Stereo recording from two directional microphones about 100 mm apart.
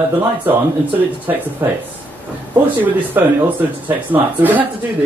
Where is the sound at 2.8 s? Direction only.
20° right (ahead or behind).